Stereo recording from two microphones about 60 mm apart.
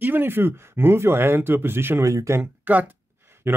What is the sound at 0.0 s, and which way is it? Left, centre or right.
Speech, right.